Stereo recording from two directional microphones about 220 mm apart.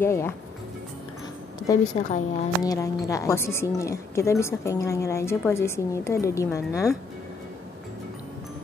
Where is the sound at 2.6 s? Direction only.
15° left (ahead or behind).